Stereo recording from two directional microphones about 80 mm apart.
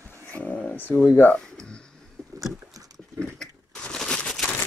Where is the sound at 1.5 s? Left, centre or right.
Centre.